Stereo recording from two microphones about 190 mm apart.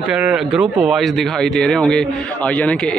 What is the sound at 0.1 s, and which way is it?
Speech, 5° right (ahead or behind).